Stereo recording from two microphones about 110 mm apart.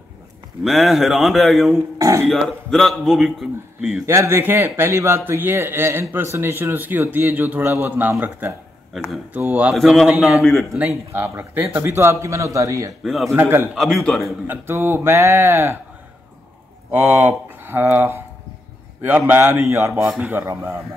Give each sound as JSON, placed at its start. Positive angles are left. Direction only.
{"t": 0.7, "sound": "a man's voice", "side_deg": 0}
{"t": 2.0, "sound": "speech", "side_deg": -30}
{"t": 2.2, "sound": "a man's voice", "side_deg": 5}
{"t": 4.0, "sound": "speech", "side_deg": -25}
{"t": 9.8, "sound": "a man's voice", "side_deg": 0}
{"t": 10.0, "sound": "a man's voice", "side_deg": -10}
{"t": 10.9, "sound": "speech", "side_deg": -20}
{"t": 13.0, "sound": "a man's voice", "side_deg": 0}
{"t": 13.3, "sound": "speech", "side_deg": -25}
{"t": 13.7, "sound": "a man's voice", "side_deg": 0}
{"t": 14.5, "sound": "speech", "side_deg": -20}
{"t": 16.9, "sound": "speech", "side_deg": -20}
{"t": 20.1, "sound": "speech", "side_deg": -15}